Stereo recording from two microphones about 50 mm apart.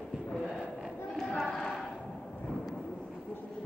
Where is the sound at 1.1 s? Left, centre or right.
Centre.